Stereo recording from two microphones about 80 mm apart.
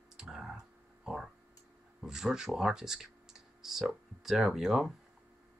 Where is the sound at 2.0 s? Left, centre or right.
Centre.